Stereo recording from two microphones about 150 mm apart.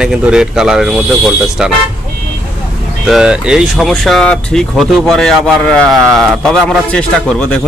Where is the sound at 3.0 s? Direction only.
5° right (ahead or behind).